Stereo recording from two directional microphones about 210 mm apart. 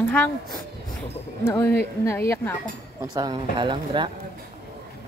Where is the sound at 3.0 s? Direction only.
20° right (ahead or behind).